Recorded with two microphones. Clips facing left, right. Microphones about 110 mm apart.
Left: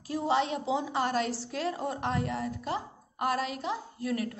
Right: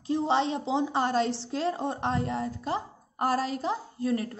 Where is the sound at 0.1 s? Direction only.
30° right (ahead or behind).